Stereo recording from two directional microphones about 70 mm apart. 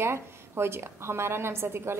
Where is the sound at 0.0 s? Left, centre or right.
Right.